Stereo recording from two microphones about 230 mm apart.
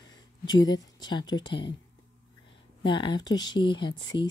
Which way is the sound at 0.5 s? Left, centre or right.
Centre.